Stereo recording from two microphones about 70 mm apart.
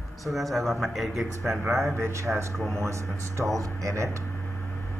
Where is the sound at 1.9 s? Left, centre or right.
Right.